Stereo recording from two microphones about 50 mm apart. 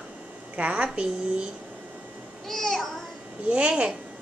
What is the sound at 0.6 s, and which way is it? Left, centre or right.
Speech, right.